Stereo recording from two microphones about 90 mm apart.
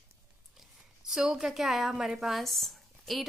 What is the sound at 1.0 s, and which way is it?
Speech, 5° right (ahead or behind).